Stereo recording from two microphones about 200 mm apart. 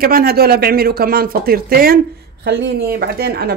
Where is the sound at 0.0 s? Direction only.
50° right (ahead or behind).